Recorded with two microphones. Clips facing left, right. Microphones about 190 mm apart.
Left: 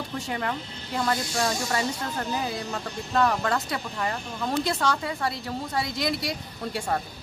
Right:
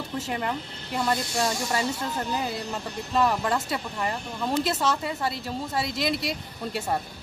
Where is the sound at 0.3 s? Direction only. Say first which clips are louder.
Even; 5° right (ahead or behind).